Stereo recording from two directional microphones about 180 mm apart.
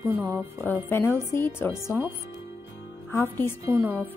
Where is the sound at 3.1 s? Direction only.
15° left (ahead or behind).